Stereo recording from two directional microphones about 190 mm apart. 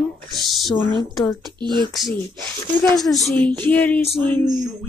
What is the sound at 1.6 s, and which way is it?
Speech, 25° right (ahead or behind).